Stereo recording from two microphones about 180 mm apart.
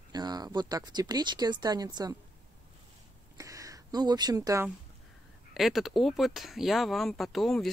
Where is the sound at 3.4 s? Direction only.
20° right (ahead or behind).